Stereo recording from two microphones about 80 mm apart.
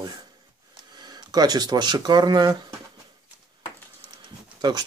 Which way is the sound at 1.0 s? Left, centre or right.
Right.